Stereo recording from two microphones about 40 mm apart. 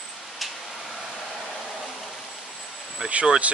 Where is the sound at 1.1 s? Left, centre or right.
Centre.